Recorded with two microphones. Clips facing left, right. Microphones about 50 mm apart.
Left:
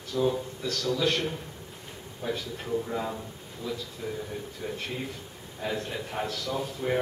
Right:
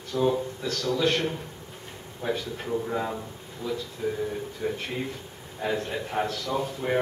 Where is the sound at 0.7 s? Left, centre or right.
Centre.